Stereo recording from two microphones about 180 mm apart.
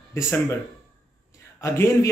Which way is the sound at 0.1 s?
15° left (ahead or behind).